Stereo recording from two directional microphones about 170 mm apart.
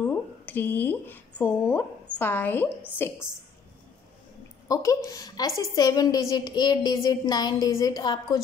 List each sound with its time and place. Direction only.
0.0 s a woman's voice: 10° left (ahead or behind)
4.6 s speech: 20° left (ahead or behind)